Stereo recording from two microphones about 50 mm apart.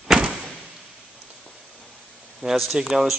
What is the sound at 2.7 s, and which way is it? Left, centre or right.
Speech, centre.